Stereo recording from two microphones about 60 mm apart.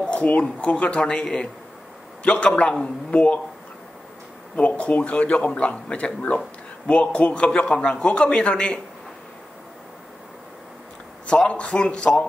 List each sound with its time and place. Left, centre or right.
0.0 s speech: left
4.6 s speech: left
11.2 s speech: centre